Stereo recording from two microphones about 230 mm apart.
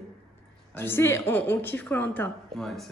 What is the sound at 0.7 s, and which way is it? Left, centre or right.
A woman's voice, centre.